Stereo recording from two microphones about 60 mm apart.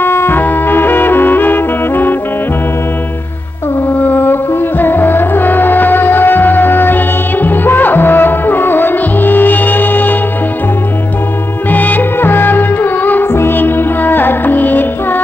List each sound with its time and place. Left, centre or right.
0.0 s music: left
4.0 s music: left
11.7 s music: left